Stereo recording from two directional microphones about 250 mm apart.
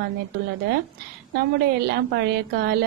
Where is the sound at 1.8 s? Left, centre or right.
Right.